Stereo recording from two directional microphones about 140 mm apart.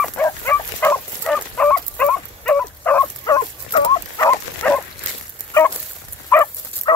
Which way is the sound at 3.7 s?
35° left (ahead or behind).